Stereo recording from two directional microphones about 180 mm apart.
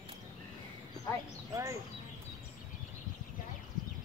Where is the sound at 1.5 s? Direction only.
15° right (ahead or behind).